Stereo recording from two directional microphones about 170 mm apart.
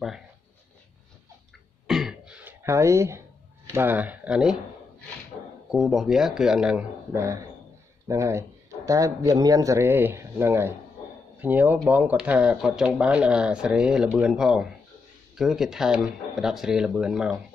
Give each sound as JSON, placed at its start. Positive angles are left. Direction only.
{"t": 1.9, "sound": "throat clearing", "side_deg": -5}
{"t": 3.7, "sound": "speech", "side_deg": -10}
{"t": 5.7, "sound": "speech", "side_deg": 0}
{"t": 8.1, "sound": "speech", "side_deg": -15}